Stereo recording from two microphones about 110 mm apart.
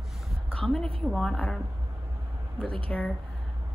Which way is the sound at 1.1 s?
5° left (ahead or behind).